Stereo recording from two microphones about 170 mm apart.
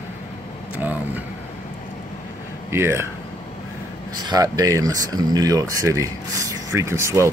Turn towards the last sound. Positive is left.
turn(degrees=-15)  # may be behind; listen again after turning